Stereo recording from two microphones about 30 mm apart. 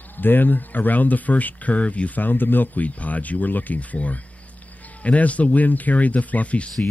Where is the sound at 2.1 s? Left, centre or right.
Left.